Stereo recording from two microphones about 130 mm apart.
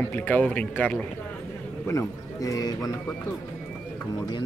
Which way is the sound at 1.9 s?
25° left (ahead or behind).